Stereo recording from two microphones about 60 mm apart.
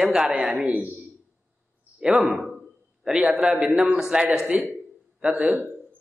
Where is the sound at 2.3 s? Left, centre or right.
Centre.